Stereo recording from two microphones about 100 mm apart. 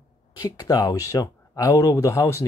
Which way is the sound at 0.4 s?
35° left (ahead or behind).